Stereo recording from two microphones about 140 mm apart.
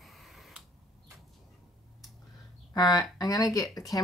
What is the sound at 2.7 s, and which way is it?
Speech, 25° left (ahead or behind).